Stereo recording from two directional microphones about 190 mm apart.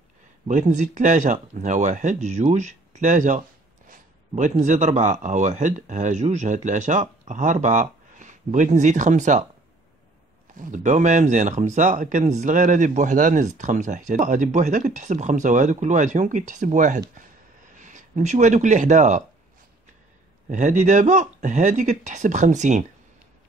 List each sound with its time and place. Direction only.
0.5 s speech: 40° right (ahead or behind)
10.6 s speech: 40° right (ahead or behind)
20.4 s speech: 40° right (ahead or behind)